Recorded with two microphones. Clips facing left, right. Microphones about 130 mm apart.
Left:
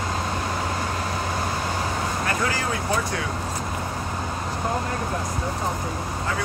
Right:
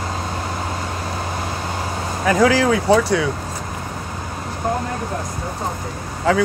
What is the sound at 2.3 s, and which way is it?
Speech, 90° right.